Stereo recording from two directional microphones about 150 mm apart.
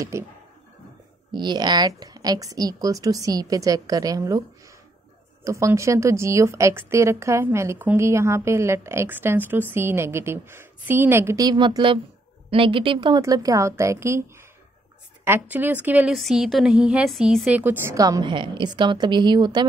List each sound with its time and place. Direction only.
0.1 s a woman's voice: 20° right (ahead or behind)
1.3 s a woman's voice: 30° right (ahead or behind)
5.4 s a woman's voice: 20° right (ahead or behind)
13.2 s a woman's voice: 25° right (ahead or behind)
15.2 s a woman's voice: 15° right (ahead or behind); by 19.7 s 30° right (ahead or behind)